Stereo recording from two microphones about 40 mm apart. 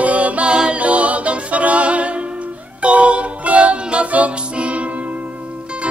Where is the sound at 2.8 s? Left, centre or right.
Right.